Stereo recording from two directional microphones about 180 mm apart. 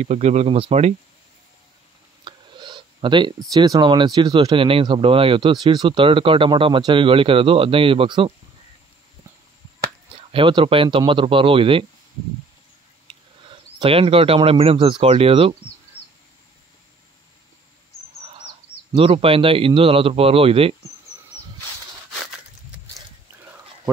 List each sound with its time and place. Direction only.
0.0 s a man's voice: 40° right (ahead or behind)
2.2 s clicking: 25° right (ahead or behind)
3.5 s speech: 20° right (ahead or behind)
10.1 s speech: 30° right (ahead or behind)
13.7 s a man's voice: 30° right (ahead or behind)
18.9 s a man's voice: 30° right (ahead or behind)